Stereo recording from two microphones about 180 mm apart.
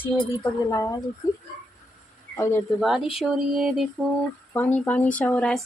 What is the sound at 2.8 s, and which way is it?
Speech, centre (ahead or behind).